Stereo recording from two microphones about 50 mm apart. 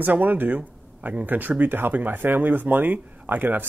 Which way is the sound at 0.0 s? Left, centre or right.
Right.